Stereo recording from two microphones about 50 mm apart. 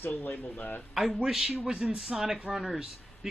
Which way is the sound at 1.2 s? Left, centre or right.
Centre.